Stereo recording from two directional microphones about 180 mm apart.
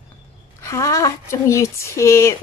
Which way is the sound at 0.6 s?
15° left (ahead or behind).